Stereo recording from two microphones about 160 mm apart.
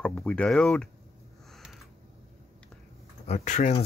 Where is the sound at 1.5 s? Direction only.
Centre (ahead or behind).